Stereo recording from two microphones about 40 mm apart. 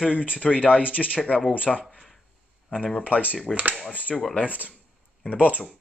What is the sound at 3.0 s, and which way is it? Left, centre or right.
Speech, left.